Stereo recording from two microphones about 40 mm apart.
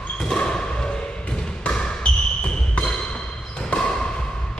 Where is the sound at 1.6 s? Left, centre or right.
Left.